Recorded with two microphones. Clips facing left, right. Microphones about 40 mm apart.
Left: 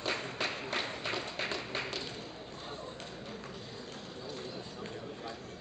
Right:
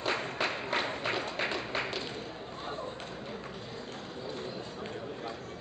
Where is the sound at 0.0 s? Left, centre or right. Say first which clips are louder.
Right 3 dB; centre.